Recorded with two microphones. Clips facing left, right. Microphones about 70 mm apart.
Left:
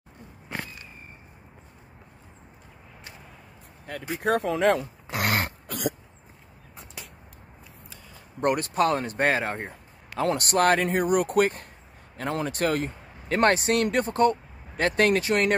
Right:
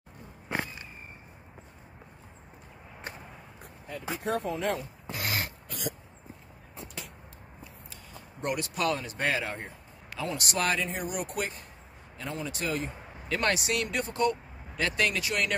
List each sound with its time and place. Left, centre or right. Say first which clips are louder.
0.5 s a sound: right 2 dB; right
3.8 s dog: left 6 dB; left
8.4 s a man's voice: left 8 dB; left